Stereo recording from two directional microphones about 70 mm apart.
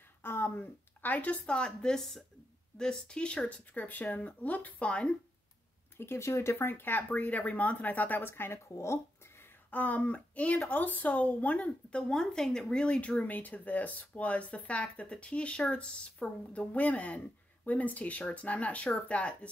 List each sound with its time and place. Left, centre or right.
0.2 s a woman's voice: left; by 5.1 s centre
5.9 s speech: left
12.1 s speech: centre